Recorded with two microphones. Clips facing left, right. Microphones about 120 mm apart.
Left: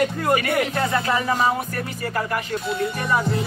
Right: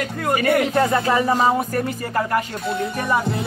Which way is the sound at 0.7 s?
35° right (ahead or behind).